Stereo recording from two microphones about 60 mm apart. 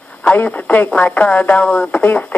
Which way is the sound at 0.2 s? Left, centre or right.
Left.